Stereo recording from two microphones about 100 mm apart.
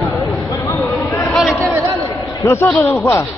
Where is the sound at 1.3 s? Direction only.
Centre (ahead or behind).